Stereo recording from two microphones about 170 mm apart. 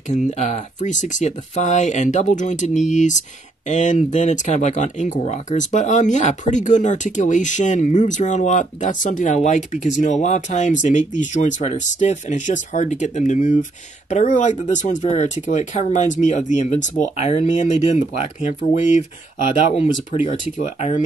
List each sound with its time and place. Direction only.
0.1 s speech: 45° left (ahead or behind)